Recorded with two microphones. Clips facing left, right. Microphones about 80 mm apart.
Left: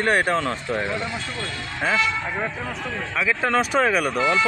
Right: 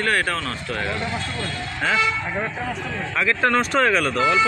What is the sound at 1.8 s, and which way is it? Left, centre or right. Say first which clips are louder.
Speech: right 1 dB; centre.